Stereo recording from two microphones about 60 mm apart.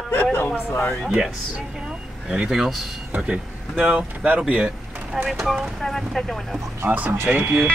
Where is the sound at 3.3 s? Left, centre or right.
Right.